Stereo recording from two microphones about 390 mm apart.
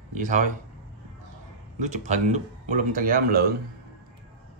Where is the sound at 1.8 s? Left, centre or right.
Centre.